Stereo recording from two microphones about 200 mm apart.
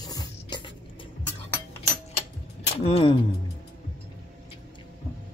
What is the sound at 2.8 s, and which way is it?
Speech, 25° left (ahead or behind).